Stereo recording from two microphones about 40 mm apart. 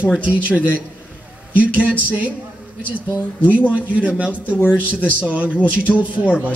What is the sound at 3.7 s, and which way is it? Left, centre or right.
Speech, right.